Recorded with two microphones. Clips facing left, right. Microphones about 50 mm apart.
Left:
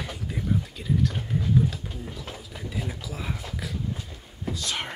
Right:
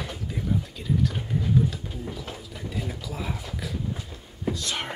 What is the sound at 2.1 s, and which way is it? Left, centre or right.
Speech, centre.